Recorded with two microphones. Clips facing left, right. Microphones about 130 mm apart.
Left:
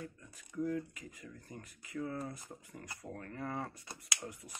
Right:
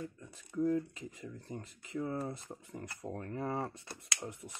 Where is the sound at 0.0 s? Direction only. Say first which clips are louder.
Right 3 dB; 25° right (ahead or behind).